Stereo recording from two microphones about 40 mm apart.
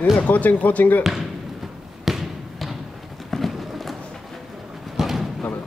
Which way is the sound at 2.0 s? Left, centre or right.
Centre.